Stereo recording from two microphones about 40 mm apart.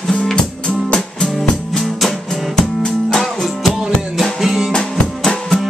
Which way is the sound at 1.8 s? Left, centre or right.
Centre.